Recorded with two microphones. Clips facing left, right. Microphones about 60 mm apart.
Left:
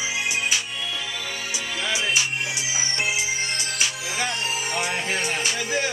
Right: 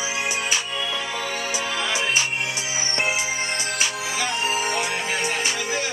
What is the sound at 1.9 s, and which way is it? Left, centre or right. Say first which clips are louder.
Music: left 1 dB; right.